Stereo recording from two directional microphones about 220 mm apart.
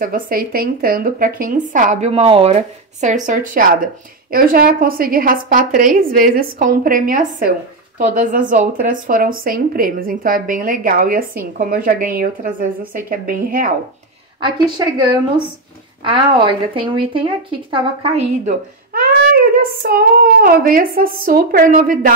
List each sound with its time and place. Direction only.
0.0 s speech: 40° right (ahead or behind)
14.4 s speech: 20° right (ahead or behind)
18.9 s speech: 40° right (ahead or behind)